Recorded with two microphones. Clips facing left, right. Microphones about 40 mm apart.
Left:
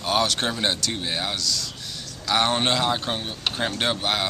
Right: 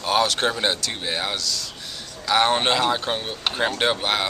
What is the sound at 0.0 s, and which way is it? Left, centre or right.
A man's voice, centre.